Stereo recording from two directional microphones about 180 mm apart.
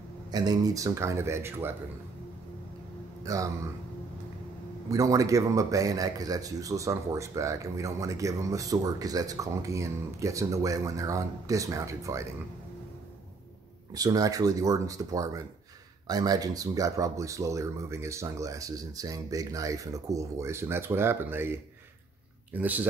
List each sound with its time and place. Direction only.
0.3 s speech: 20° right (ahead or behind)
3.3 s speech: 20° right (ahead or behind)
4.8 s speech: 20° right (ahead or behind)
13.9 s speech: 20° right (ahead or behind)